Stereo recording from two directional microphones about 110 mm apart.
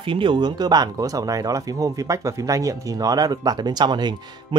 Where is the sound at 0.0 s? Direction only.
50° right (ahead or behind).